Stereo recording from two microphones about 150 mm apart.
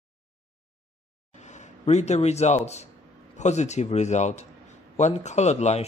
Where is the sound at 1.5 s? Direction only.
50° left (ahead or behind).